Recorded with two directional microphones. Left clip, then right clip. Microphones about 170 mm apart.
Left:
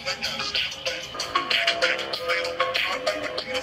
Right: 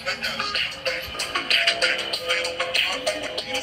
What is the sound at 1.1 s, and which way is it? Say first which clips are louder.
Music: right 1 dB; 15° left (ahead or behind).